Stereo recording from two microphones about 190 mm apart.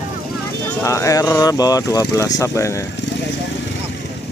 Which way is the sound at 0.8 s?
15° left (ahead or behind).